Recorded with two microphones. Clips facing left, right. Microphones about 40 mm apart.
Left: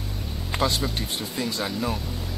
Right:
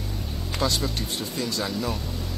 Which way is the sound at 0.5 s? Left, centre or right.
Left.